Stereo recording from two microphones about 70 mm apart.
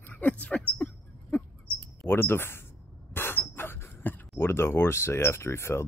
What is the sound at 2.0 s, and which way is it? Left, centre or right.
Speech, left.